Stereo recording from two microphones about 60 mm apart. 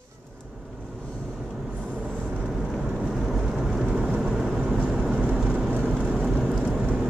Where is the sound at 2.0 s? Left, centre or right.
Right.